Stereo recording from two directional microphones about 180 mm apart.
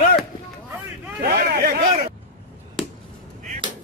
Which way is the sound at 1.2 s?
60° right (ahead or behind).